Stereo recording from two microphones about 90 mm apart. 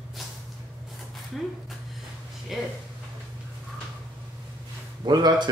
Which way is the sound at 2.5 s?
5° right (ahead or behind).